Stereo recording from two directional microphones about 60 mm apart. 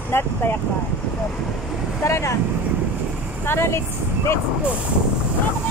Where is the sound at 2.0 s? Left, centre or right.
Left.